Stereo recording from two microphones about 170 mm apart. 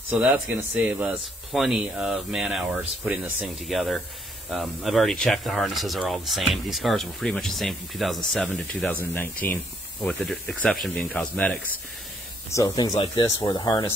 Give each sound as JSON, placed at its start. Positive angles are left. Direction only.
{"t": 0.8, "sound": "speech", "side_deg": -10}
{"t": 10.0, "sound": "speech", "side_deg": 0}
{"t": 12.5, "sound": "speech", "side_deg": 20}